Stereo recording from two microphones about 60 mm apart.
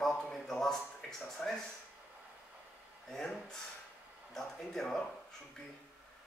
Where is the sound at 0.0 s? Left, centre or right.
Centre.